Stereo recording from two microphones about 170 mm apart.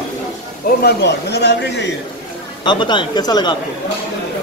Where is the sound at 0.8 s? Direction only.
80° left.